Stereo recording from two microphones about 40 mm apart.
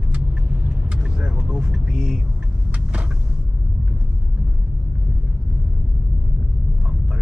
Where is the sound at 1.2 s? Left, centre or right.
Right.